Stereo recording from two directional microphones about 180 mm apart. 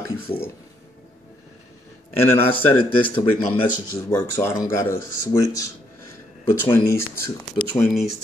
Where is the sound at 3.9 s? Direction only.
15° left (ahead or behind).